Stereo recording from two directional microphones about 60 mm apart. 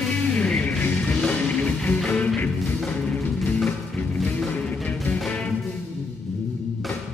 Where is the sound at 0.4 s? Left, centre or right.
Centre.